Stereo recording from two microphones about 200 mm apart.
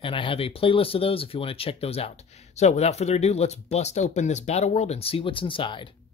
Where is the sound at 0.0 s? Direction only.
25° left (ahead or behind).